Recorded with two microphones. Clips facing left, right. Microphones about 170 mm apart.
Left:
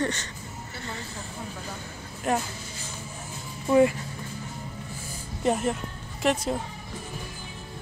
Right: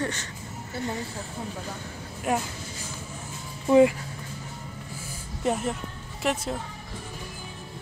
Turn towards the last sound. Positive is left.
turn(degrees=0)  # may be behind; listen again after turning